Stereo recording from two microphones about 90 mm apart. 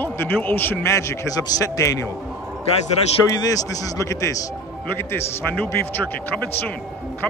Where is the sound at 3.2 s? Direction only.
45° left (ahead or behind).